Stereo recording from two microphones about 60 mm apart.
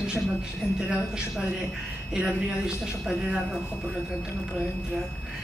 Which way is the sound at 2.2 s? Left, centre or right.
Centre.